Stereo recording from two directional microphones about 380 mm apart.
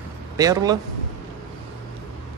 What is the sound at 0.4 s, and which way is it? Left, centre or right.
Speech, centre.